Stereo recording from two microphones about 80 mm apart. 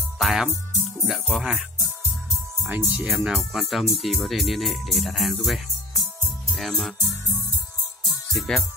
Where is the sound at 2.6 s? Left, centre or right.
Right.